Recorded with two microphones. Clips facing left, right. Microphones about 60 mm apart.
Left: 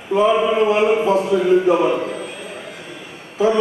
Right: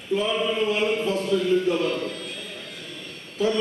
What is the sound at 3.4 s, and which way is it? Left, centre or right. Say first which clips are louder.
Speech: left 7 dB; centre.